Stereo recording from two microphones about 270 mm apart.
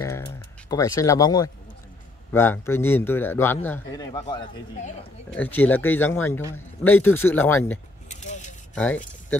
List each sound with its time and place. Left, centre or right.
0.0 s speech: centre
5.3 s speech: centre
8.1 s a sound: left
8.7 s speech: centre